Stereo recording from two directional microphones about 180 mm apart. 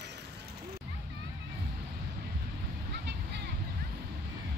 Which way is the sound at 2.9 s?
70° right (ahead or behind).